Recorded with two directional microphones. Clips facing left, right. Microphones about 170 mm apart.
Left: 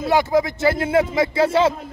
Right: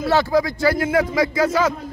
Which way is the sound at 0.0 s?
20° left (ahead or behind).